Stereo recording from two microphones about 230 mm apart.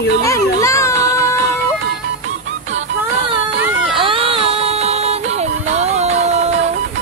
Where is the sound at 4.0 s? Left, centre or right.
Right.